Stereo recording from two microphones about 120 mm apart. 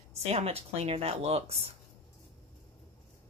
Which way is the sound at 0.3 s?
60° right (ahead or behind).